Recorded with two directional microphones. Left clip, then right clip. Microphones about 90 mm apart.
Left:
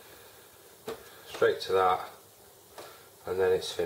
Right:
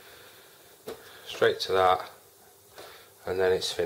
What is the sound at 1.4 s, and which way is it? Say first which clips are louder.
Speech: right 2 dB; 40° right (ahead or behind).